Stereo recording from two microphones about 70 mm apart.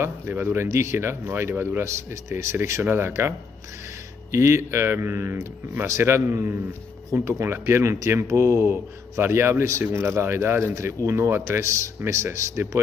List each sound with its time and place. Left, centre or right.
0.3 s speech: right
0.7 s speech: right